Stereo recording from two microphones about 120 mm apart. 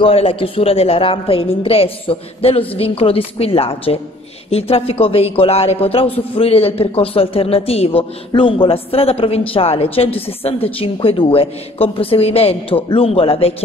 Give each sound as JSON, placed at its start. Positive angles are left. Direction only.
{"t": 0.0, "sound": "a woman's voice", "side_deg": 50}